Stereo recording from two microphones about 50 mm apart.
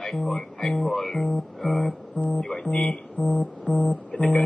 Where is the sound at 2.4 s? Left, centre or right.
Centre.